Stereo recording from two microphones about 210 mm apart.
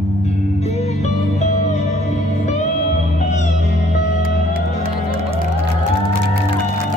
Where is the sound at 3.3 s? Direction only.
35° left (ahead or behind).